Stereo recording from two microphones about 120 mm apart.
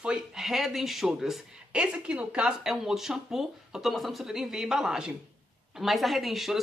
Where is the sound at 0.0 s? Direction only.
5° right (ahead or behind).